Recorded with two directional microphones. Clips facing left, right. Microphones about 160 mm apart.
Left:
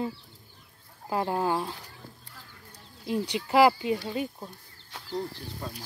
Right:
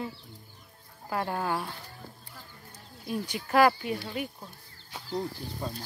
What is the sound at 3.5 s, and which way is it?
Speech, 20° left (ahead or behind).